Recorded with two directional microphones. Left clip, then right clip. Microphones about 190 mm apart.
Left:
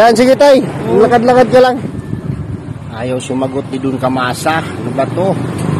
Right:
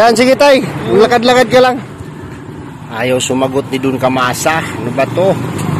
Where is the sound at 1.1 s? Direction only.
20° right (ahead or behind).